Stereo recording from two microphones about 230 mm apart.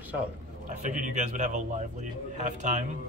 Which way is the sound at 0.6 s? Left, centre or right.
Right.